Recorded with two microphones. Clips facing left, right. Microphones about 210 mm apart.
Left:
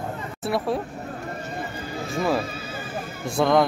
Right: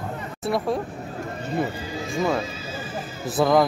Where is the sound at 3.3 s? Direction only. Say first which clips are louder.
Right 1 dB; centre (ahead or behind).